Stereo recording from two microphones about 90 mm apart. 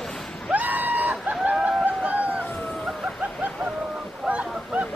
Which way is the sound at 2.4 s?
20° left (ahead or behind).